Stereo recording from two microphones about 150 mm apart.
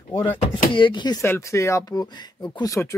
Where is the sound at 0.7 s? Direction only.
30° left (ahead or behind).